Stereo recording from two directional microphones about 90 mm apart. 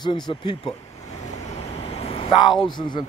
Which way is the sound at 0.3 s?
70° left (ahead or behind).